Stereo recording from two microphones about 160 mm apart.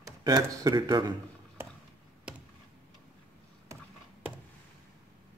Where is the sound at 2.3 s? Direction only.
5° right (ahead or behind).